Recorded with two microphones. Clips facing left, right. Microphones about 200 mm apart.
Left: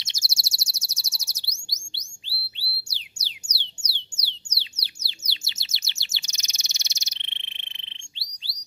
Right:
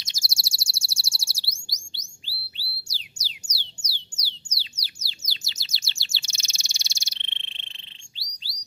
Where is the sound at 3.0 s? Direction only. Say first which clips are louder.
Right 1 dB; 25° left (ahead or behind).